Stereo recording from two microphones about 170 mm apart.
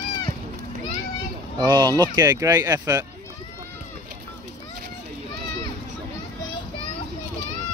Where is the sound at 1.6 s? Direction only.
25° right (ahead or behind).